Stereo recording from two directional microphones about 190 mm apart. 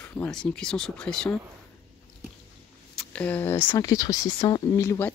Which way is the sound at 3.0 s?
5° left (ahead or behind).